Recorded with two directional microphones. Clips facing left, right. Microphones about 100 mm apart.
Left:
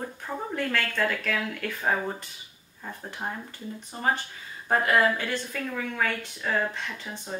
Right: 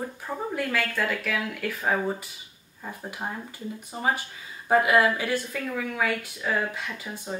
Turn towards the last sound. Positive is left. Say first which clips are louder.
# right 2 dB
turn(degrees=-10)  # may be behind; listen again after turning